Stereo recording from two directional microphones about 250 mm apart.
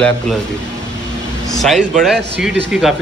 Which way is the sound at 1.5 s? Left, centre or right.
Centre.